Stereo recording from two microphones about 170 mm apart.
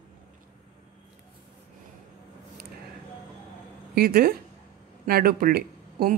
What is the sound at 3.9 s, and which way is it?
Speech, 65° right (ahead or behind).